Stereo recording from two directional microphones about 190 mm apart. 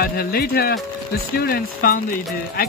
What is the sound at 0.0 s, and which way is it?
Speech, 55° left (ahead or behind).